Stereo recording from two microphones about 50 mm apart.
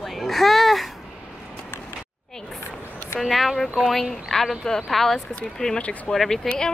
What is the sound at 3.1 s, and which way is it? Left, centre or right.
A woman's voice, centre.